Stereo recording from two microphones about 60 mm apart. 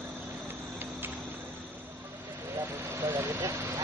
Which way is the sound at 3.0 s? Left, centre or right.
Right.